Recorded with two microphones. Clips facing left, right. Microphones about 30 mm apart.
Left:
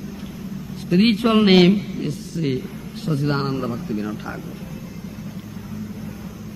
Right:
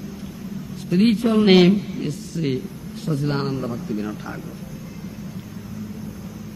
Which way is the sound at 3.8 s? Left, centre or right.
Centre.